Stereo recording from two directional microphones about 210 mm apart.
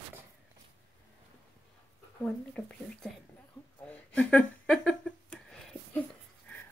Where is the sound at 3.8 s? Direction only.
5° left (ahead or behind).